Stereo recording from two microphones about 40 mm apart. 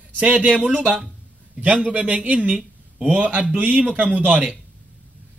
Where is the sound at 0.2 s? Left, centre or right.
Right.